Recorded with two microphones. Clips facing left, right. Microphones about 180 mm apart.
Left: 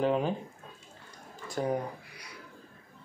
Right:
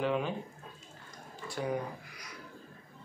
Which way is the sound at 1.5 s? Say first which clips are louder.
Left 4 dB; 45° left (ahead or behind).